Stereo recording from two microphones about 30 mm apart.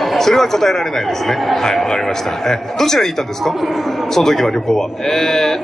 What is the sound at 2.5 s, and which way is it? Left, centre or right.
Speech, centre.